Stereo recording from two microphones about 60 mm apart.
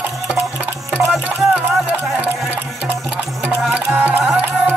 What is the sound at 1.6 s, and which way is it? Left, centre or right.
Music, right.